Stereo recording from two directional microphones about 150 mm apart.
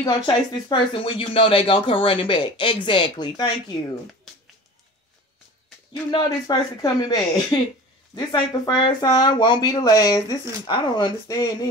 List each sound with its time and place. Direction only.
0.0 s speech: 30° left (ahead or behind)
6.0 s speech: 25° left (ahead or behind)